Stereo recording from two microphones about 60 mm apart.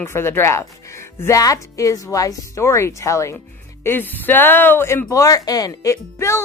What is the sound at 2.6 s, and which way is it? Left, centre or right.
Speech, left.